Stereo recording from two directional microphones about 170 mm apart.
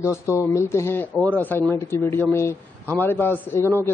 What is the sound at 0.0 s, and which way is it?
Speech, 15° left (ahead or behind).